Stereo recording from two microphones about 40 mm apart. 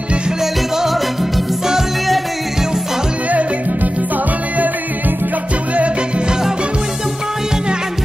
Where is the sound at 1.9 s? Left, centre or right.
Centre.